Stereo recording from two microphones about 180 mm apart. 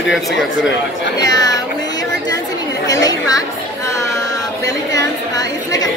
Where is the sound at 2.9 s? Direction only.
20° left (ahead or behind).